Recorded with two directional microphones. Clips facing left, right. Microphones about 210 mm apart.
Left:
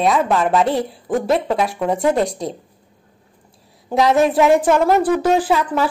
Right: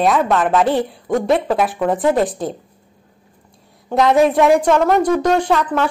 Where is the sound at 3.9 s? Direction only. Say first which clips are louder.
Right 2 dB; centre (ahead or behind).